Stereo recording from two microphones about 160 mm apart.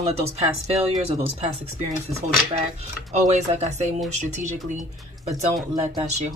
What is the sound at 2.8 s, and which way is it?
A woman's voice, 45° right (ahead or behind).